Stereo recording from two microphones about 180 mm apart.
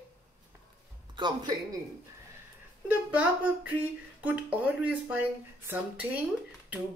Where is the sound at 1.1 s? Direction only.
25° right (ahead or behind).